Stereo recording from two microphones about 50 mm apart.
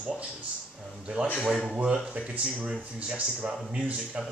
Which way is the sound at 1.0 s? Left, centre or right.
Right.